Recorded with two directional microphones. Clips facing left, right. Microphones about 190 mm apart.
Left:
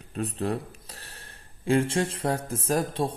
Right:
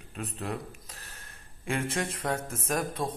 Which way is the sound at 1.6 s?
30° left (ahead or behind).